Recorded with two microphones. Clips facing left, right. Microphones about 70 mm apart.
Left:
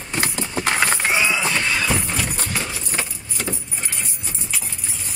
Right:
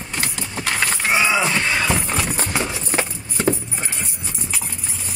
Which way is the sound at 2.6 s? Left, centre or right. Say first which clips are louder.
Right 4 dB; right.